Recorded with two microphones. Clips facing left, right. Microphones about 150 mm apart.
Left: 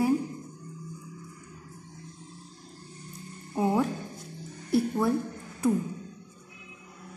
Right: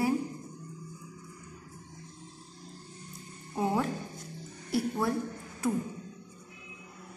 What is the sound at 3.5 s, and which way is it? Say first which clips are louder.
Speech: left 3 dB; 10° left (ahead or behind).